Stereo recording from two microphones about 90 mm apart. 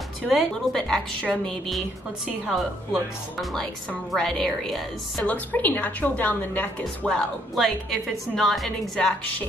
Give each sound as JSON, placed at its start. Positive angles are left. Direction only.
{"t": 0.2, "sound": "a woman's voice", "side_deg": 5}
{"t": 2.5, "sound": "a woman's voice", "side_deg": 0}
{"t": 5.2, "sound": "a woman's voice", "side_deg": 15}
{"t": 7.1, "sound": "a woman's voice", "side_deg": 5}